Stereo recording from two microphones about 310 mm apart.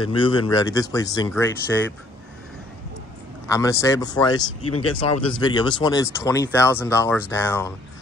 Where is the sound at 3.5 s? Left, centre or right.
Centre.